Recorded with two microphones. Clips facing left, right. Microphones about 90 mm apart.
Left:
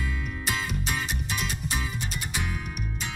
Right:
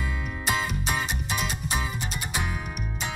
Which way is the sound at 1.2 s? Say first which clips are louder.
Right 2 dB; 5° right (ahead or behind).